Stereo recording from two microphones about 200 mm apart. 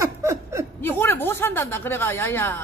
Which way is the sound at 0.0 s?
15° right (ahead or behind).